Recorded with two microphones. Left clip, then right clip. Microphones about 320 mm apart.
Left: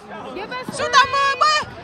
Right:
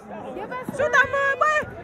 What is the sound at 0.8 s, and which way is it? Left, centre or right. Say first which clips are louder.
Speech: left 4 dB; centre.